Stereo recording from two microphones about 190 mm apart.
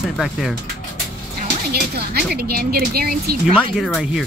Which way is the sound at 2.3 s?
55° right (ahead or behind).